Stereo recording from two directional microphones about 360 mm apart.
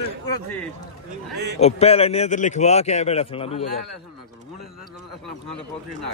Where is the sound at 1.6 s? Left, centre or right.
Centre.